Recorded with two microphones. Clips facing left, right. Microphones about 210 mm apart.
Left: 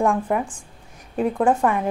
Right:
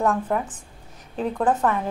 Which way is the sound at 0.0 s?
10° left (ahead or behind).